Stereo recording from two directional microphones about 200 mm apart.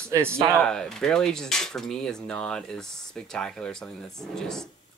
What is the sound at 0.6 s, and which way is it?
Speech, 5° left (ahead or behind).